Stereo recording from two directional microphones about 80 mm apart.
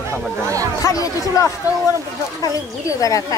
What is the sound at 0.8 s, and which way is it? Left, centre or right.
Speech, left.